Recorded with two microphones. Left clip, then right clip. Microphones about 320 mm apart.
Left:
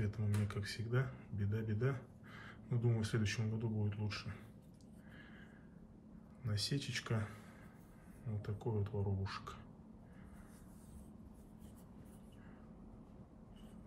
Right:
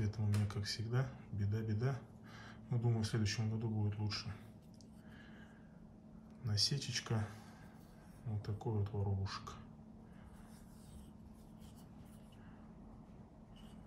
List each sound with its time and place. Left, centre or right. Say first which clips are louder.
0.0 s speech: even; centre
6.4 s speech: right 4 dB; centre
8.4 s speech: left 1 dB; centre